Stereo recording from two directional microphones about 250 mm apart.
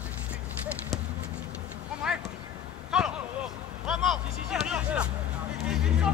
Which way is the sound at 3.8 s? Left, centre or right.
Centre.